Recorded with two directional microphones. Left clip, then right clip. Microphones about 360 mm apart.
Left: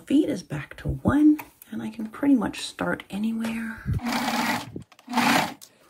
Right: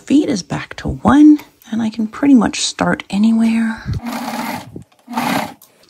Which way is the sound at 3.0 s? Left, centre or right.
Centre.